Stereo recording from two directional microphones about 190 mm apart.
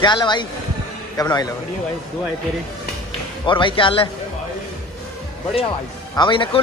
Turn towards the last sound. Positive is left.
turn(degrees=25)  # may be behind; listen again after turning